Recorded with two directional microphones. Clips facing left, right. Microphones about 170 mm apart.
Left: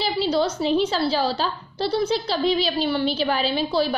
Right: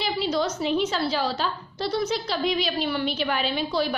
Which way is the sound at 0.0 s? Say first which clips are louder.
Left 3 dB; 30° left (ahead or behind).